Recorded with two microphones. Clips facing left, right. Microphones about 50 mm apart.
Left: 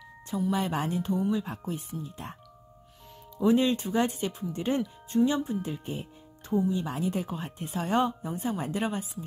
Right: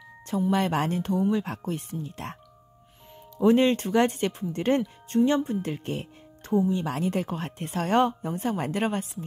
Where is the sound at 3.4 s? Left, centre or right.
Right.